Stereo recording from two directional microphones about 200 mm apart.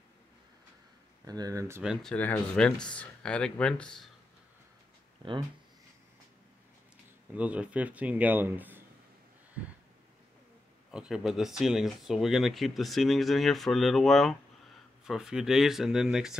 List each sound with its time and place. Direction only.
1.2 s speech: 20° right (ahead or behind)
1.8 s speech: centre (ahead or behind)
7.3 s speech: 5° right (ahead or behind)
10.9 s speech: 5° right (ahead or behind)